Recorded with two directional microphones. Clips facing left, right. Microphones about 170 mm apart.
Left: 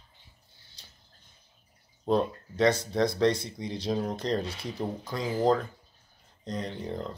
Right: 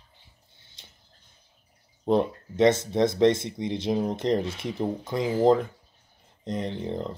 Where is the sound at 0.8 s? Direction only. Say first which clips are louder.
Right 3 dB; 20° right (ahead or behind).